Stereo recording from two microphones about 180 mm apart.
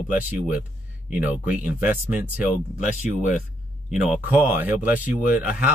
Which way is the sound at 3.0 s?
40° left (ahead or behind).